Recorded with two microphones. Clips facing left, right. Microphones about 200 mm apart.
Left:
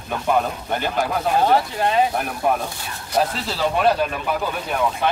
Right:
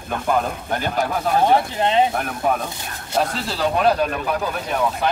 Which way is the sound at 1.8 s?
25° right (ahead or behind).